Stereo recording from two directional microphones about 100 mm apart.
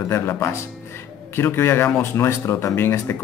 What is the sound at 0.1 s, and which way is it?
Speech, 25° left (ahead or behind).